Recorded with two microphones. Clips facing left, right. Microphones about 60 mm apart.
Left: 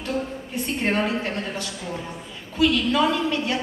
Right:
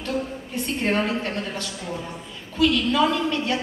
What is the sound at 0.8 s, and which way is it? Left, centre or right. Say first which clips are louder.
Speech: even; left.